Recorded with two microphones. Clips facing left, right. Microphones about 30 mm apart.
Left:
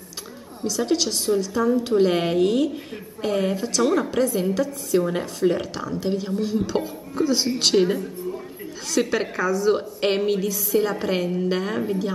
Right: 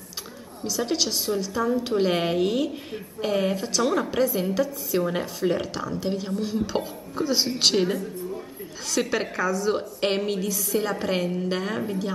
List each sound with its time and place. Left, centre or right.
0.7 s a woman's voice: centre